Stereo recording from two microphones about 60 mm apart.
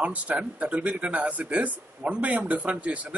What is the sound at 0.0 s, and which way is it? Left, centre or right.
Speech, right.